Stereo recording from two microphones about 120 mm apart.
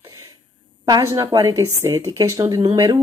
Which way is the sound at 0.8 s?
30° right (ahead or behind).